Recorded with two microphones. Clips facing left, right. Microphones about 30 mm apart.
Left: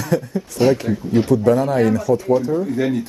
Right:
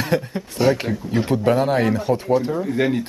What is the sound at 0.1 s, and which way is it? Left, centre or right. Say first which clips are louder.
Speech: left 2 dB; right.